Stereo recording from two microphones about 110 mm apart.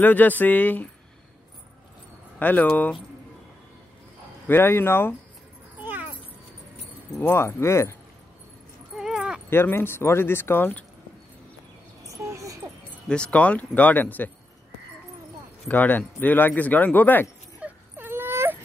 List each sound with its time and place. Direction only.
0.0 s speech: 15° left (ahead or behind)
2.3 s speech: 15° left (ahead or behind)
4.5 s speech: 20° left (ahead or behind)
5.8 s a sound: 15° right (ahead or behind)
7.2 s speech: 20° left (ahead or behind)
8.9 s a sound: 5° right (ahead or behind)
9.5 s speech: 20° left (ahead or behind)
12.2 s a sound: 25° right (ahead or behind)
13.1 s speech: 10° left (ahead or behind)
15.7 s speech: 15° left (ahead or behind)
17.6 s wail: 15° right (ahead or behind)